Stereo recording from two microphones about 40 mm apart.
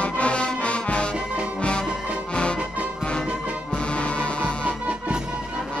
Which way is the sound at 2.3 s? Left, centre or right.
Left.